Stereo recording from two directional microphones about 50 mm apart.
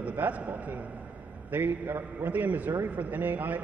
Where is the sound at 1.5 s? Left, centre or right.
Right.